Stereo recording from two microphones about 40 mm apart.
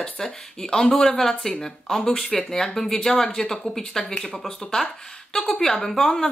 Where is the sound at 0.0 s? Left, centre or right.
Centre.